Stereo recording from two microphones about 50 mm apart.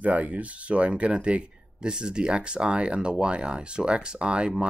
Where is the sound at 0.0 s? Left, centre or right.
Right.